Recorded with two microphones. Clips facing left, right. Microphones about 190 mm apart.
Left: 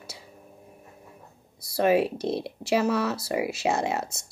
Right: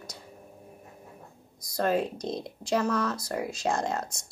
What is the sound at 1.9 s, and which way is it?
Speech, 70° left (ahead or behind).